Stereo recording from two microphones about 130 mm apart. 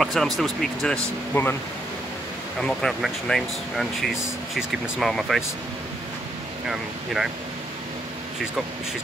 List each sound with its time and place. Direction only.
0.0 s speech: centre (ahead or behind)
1.3 s speech: 15° left (ahead or behind)
2.6 s speech: centre (ahead or behind)